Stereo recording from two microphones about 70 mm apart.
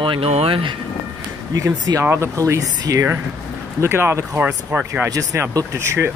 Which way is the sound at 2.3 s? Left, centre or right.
Right.